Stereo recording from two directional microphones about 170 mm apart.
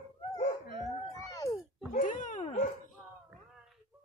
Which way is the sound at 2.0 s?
45° left (ahead or behind).